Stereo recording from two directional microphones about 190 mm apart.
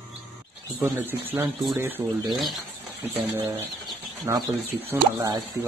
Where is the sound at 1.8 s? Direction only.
10° right (ahead or behind).